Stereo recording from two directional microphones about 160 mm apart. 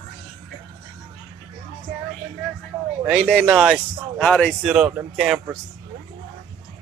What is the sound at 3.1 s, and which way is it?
Speech, 5° left (ahead or behind).